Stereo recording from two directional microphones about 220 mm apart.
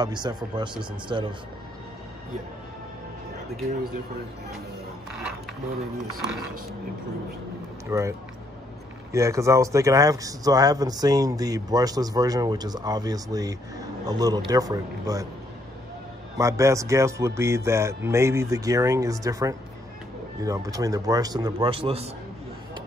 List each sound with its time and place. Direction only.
0.0 s speech: 20° right (ahead or behind)
6.1 s speech: centre (ahead or behind)
7.9 s speech: 15° right (ahead or behind)
16.3 s speech: 15° right (ahead or behind)